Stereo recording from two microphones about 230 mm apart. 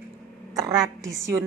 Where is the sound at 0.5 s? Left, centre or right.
Centre.